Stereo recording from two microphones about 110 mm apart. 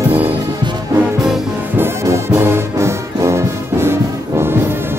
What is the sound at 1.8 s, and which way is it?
Brass instrument, 25° right (ahead or behind).